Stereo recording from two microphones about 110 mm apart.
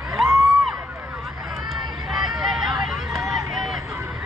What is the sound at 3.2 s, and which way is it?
Run, centre (ahead or behind).